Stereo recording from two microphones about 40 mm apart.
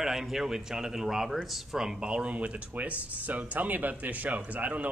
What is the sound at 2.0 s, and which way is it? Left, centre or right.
Speech, right.